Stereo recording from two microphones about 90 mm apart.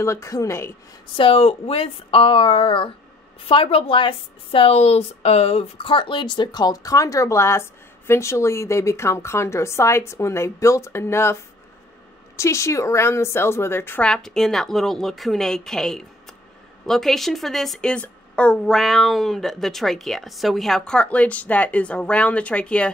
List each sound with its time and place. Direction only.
0.0 s a woman's voice: 35° left (ahead or behind)
1.1 s speech: 85° left
3.4 s a woman's voice: 85° left; by 11.3 s 30° left (ahead or behind)
12.4 s a woman's voice: 35° left (ahead or behind)
14.0 s a woman's voice: 5° left (ahead or behind)